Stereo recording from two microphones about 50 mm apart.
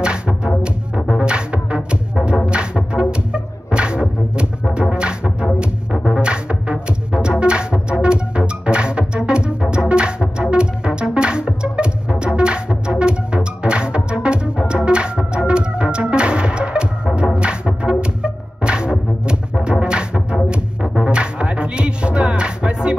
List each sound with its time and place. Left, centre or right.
0.0 s music: centre
14.9 s organ: centre
17.4 s music: right